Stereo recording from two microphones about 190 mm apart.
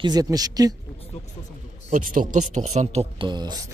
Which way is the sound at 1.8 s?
45° right (ahead or behind).